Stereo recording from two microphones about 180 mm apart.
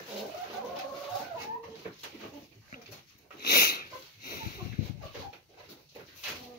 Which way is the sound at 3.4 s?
55° left (ahead or behind).